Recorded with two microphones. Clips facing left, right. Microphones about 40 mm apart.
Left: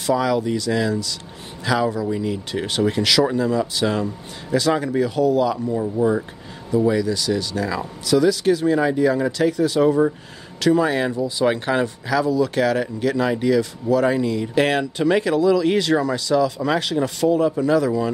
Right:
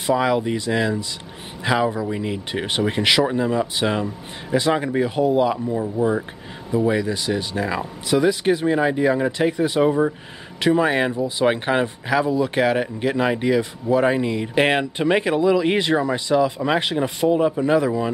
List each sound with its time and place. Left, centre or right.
0.0 s speech: right
5.7 s speech: centre
6.9 s speech: right